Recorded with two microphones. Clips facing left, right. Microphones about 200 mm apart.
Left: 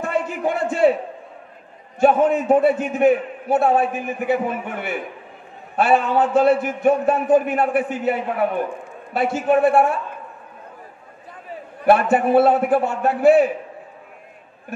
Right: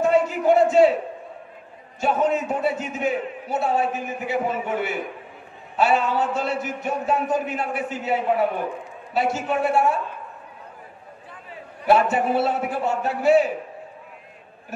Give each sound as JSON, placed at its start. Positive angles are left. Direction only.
{"t": 0.0, "sound": "a sound", "side_deg": 55}
{"t": 2.0, "sound": "a man's voice", "side_deg": 55}
{"t": 11.8, "sound": "a man's voice", "side_deg": 55}